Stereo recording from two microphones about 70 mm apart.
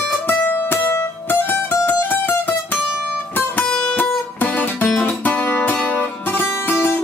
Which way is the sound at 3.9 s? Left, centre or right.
Left.